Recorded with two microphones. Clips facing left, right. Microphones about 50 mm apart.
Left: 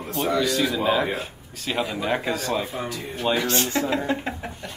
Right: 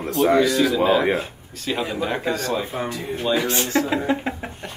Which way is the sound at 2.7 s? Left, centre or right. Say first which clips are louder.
Right 4 dB; centre.